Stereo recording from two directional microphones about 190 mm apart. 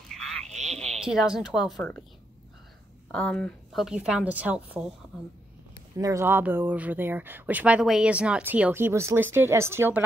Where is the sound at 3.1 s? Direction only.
5° left (ahead or behind).